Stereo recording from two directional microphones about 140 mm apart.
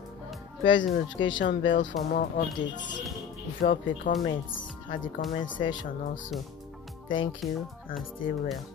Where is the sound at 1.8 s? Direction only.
75° left (ahead or behind).